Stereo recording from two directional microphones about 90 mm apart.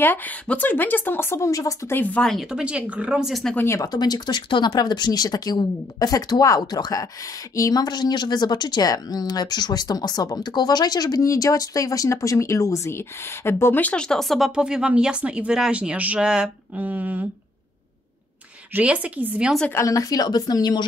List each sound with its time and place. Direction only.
0.0 s speech: 20° left (ahead or behind); by 1.8 s 40° left (ahead or behind)
1.9 s speech: 20° left (ahead or behind)
2.5 s speech: 15° right (ahead or behind)
3.5 s speech: 30° left (ahead or behind)
3.8 s speech: 45° left (ahead or behind); by 14.5 s centre (ahead or behind)
14.5 s speech: 10° right (ahead or behind)
16.7 s speech: 20° right (ahead or behind)
18.7 s speech: 15° right (ahead or behind)
19.7 s speech: 35° left (ahead or behind)